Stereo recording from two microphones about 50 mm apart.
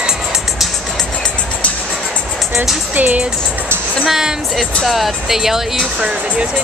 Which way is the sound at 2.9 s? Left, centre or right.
Right.